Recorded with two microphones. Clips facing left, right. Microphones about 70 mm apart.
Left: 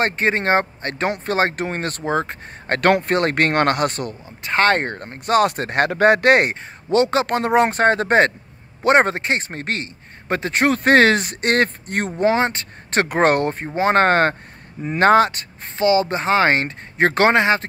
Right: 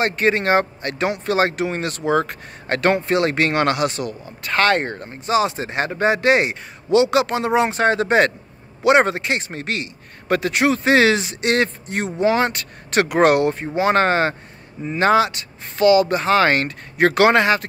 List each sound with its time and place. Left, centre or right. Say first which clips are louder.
0.0 s speech: right 1 dB; left
2.1 s speech: right 2 dB; left
2.7 s speech: left 1 dB; left
4.4 s speech: left 1 dB; left
4.6 s speech: even; left
6.5 s speech: right 2 dB; left
10.6 s speech: left 2 dB; left
12.2 s speech: even; left
15.8 s speech: right 3 dB; left